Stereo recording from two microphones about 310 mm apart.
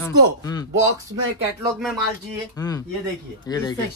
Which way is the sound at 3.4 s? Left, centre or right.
Centre.